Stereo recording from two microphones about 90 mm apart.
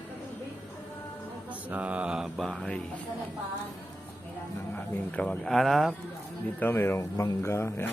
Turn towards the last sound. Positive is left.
turn(degrees=25)  # may be behind; listen again after turning